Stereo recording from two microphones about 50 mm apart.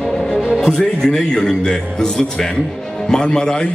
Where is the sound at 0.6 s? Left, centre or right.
Centre.